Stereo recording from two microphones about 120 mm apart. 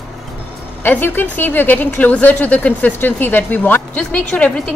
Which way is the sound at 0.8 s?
15° left (ahead or behind).